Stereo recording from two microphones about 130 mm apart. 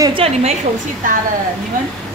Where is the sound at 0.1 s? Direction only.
50° right (ahead or behind).